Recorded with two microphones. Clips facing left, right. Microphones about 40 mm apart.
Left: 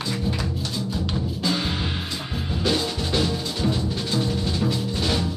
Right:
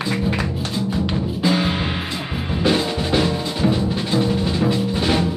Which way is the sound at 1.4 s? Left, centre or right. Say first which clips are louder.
Right 6 dB; right.